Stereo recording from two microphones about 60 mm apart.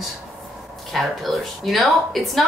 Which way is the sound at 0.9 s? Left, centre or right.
Centre.